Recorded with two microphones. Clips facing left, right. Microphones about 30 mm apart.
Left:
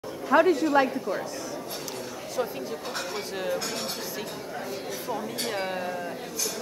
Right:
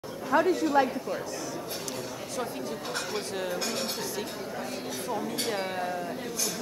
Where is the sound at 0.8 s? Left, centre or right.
Left.